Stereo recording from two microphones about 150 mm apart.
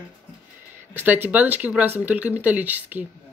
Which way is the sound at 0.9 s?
15° right (ahead or behind).